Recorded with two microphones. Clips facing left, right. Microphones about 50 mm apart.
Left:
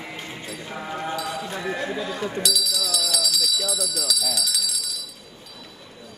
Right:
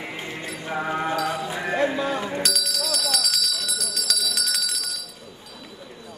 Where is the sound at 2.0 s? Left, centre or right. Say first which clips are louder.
Right 3 dB; right.